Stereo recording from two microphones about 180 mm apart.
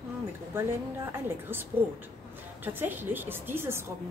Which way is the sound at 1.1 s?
10° right (ahead or behind).